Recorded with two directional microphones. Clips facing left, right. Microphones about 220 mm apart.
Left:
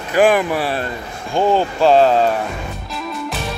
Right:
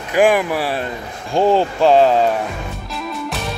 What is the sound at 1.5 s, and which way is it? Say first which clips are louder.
Speech: left 1 dB; 25° right (ahead or behind).